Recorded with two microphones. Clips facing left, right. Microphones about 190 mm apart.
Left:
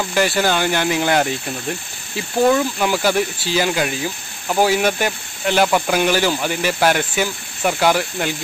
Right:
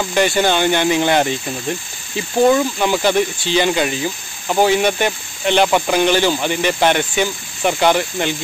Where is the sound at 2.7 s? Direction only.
5° left (ahead or behind).